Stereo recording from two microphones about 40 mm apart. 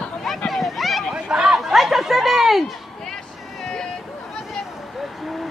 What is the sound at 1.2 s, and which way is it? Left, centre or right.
Speech, centre.